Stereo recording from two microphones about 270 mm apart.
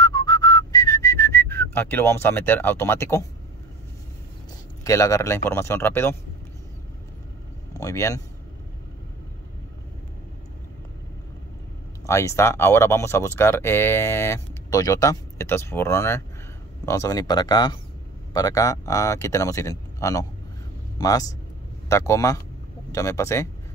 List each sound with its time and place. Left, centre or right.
0.0 s whistling: centre
4.8 s speech: centre
7.7 s speech: centre
12.1 s speech: centre